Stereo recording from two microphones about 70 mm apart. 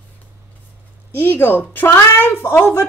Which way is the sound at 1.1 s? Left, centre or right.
Left.